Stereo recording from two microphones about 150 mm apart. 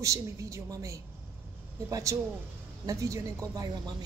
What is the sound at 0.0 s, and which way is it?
A woman's voice, 20° right (ahead or behind).